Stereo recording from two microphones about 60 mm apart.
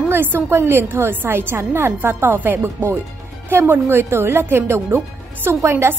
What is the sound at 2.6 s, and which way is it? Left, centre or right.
A woman's voice, right.